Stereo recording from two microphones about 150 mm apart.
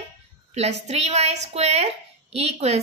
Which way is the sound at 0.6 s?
45° right (ahead or behind).